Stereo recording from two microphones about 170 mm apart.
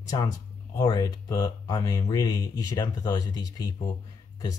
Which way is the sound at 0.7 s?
25° left (ahead or behind).